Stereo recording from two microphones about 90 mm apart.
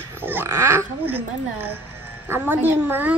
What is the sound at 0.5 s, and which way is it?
Speech, 30° right (ahead or behind).